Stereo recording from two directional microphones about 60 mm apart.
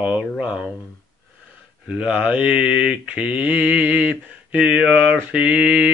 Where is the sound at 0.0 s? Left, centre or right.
Right.